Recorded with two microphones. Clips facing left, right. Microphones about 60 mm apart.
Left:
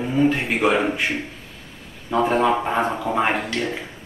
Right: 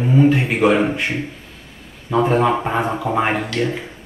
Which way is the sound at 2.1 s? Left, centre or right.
Centre.